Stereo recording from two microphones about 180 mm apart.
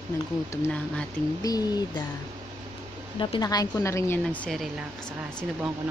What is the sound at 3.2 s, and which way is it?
A woman's voice, 25° left (ahead or behind).